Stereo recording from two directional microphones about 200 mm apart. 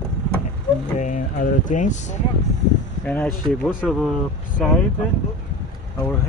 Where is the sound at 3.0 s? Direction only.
5° left (ahead or behind).